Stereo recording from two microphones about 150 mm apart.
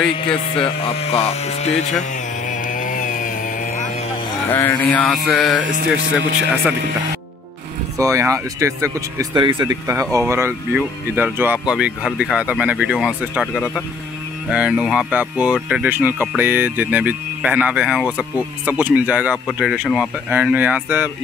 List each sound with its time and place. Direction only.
1.0 s speech: 45° left (ahead or behind)
2.7 s chainsaw: 60° left (ahead or behind)
4.5 s music: 15° left (ahead or behind)
6.1 s speech: 15° right (ahead or behind)
8.0 s speech: 20° right (ahead or behind)
9.8 s speech: 20° right (ahead or behind)